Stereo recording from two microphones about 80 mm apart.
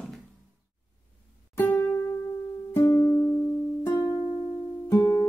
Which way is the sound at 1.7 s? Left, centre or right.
Left.